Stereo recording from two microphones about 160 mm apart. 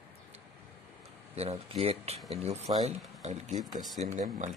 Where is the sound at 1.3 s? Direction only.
40° right (ahead or behind).